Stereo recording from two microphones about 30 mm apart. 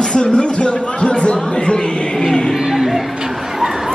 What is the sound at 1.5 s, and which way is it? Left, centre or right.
Music, left.